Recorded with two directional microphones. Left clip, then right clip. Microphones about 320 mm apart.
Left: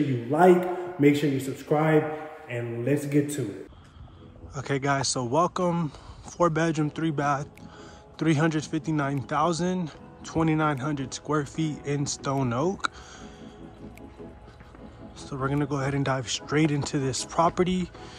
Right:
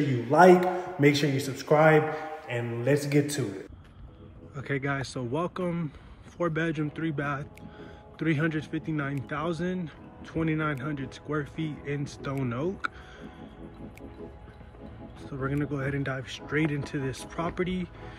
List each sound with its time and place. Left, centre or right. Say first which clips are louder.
0.0 s a man's voice: right 2 dB; centre
4.6 s speech: left 5 dB; centre
15.2 s speech: left 3 dB; centre